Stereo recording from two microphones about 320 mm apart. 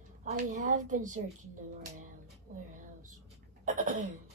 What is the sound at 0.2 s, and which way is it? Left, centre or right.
Speech, right.